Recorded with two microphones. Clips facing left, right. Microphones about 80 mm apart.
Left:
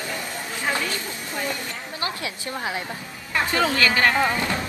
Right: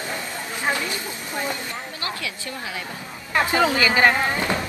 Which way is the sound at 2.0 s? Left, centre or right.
Left.